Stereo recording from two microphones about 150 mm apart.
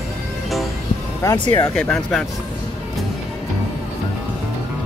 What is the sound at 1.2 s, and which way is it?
Speech, 30° left (ahead or behind).